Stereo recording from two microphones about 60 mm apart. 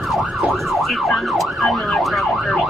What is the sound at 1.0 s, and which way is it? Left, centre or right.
Emergency vehicle, centre.